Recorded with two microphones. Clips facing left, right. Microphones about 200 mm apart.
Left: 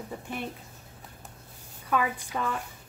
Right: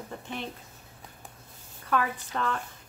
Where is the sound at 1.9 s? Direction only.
10° left (ahead or behind).